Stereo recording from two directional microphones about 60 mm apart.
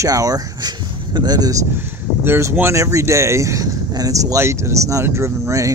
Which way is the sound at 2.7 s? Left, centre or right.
Right.